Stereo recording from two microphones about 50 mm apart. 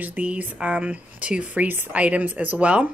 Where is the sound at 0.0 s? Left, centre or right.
Right.